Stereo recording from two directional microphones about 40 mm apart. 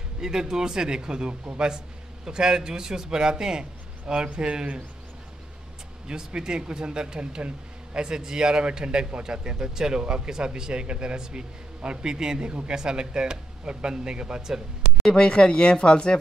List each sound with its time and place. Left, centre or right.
0.2 s a man's voice: centre
6.0 s speech: centre
15.2 s speech: left